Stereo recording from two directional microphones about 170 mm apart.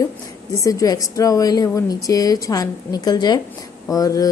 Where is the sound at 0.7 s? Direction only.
20° left (ahead or behind).